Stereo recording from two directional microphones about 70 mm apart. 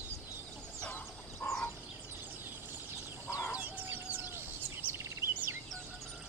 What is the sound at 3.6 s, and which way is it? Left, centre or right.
Chicken, right.